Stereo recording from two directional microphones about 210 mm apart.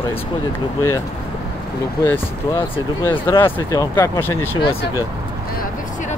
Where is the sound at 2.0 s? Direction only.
20° left (ahead or behind).